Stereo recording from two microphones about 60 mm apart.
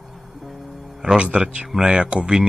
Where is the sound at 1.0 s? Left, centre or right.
Centre.